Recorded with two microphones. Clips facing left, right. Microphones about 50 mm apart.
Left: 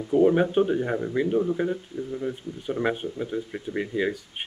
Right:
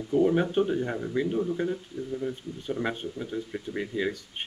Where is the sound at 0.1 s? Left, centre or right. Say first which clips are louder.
Left 4 dB; centre.